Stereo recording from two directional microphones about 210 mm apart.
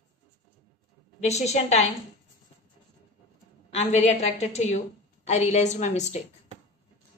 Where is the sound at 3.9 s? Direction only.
30° left (ahead or behind).